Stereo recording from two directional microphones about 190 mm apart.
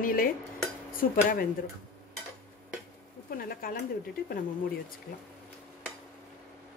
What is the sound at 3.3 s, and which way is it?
Dishes, 50° left (ahead or behind).